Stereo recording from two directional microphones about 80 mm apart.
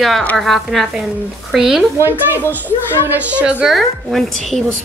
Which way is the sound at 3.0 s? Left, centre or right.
Centre.